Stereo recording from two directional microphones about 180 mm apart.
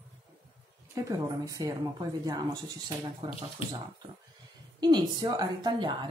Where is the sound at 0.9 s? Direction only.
20° right (ahead or behind).